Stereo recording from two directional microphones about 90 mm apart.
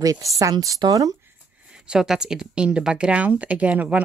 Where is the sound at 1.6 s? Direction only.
10° right (ahead or behind).